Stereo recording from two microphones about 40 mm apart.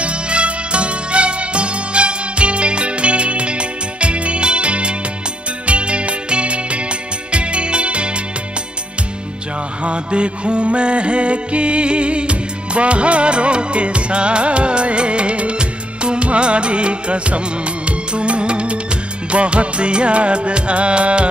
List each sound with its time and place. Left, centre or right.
0.0 s music: right
9.8 s music: right